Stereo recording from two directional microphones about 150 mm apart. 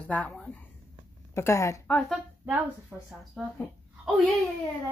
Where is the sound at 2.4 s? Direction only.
10° right (ahead or behind).